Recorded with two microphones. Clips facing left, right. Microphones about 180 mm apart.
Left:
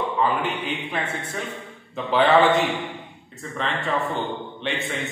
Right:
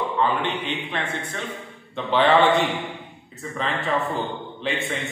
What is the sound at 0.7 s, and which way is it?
A man's voice, 10° left (ahead or behind).